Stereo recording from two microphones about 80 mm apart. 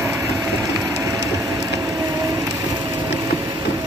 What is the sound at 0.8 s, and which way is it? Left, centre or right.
Train, right.